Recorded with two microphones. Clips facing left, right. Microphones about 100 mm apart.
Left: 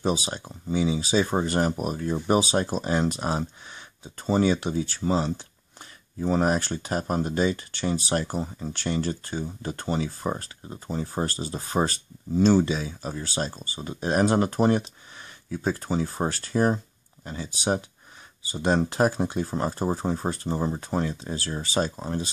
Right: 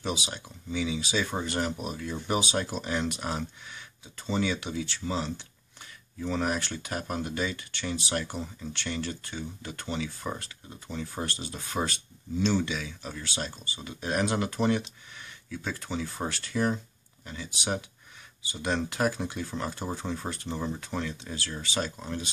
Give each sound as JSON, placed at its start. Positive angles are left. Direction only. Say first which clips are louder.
{"t": 0.0, "sound": "speech", "louder": "left 7 dB", "side_deg": 35}